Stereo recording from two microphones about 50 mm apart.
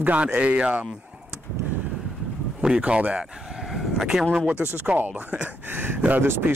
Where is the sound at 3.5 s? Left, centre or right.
Centre.